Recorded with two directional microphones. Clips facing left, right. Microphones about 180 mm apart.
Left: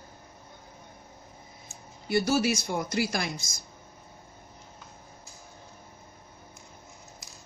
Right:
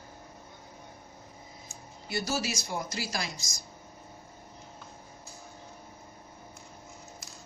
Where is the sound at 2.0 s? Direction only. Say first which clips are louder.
Left 7 dB; 55° left (ahead or behind).